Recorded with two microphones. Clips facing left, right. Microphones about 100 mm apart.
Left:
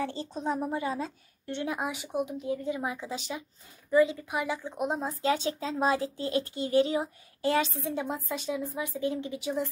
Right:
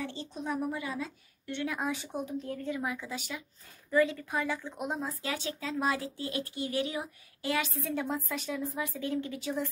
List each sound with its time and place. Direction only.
0.0 s a woman's voice: 35° left (ahead or behind); by 2.7 s 10° left (ahead or behind)
2.7 s speech: 25° left (ahead or behind)